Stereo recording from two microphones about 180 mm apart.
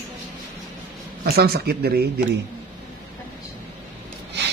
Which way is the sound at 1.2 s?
60° right (ahead or behind).